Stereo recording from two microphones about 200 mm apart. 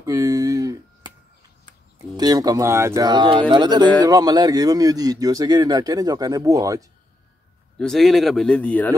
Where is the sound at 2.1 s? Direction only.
20° right (ahead or behind).